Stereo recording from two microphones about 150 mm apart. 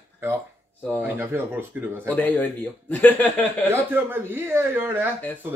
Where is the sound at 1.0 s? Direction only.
15° right (ahead or behind).